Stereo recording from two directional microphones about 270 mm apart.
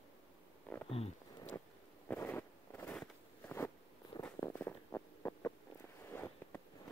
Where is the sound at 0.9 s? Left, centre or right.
Left.